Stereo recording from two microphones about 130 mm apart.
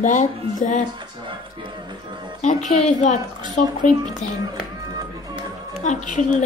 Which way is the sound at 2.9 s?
60° left (ahead or behind).